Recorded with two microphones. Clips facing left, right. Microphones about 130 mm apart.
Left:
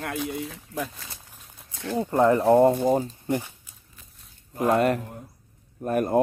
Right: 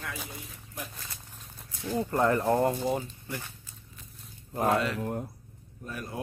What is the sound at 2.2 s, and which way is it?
Speech, 20° left (ahead or behind).